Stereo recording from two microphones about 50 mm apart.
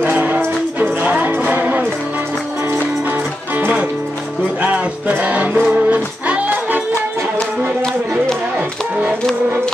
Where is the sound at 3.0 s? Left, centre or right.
Right.